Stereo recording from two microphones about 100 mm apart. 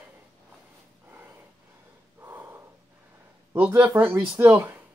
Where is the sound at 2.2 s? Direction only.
25° right (ahead or behind).